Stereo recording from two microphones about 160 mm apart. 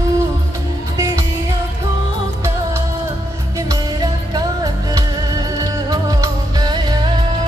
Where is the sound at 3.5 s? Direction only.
25° right (ahead or behind).